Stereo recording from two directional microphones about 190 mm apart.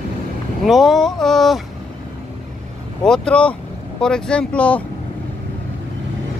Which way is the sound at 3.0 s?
5° left (ahead or behind).